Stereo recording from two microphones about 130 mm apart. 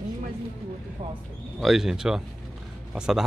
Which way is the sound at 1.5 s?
Centre (ahead or behind).